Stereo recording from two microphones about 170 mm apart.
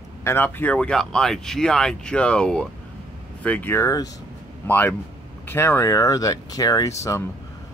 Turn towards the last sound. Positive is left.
turn(degrees=20)  # may be behind; listen again after turning